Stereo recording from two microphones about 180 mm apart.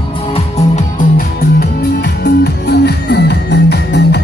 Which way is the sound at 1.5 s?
65° left (ahead or behind).